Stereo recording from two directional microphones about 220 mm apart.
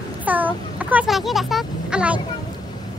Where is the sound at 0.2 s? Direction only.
5° right (ahead or behind).